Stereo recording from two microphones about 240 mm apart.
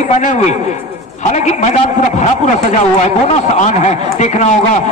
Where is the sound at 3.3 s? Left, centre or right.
Left.